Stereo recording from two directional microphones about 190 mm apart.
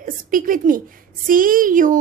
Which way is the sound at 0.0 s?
45° right (ahead or behind).